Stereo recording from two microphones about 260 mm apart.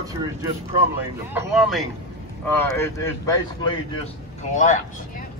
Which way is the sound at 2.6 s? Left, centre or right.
Centre.